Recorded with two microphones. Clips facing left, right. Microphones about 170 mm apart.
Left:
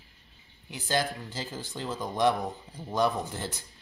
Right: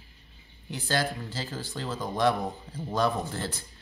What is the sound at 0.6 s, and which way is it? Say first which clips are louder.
Speech: even; 15° left (ahead or behind).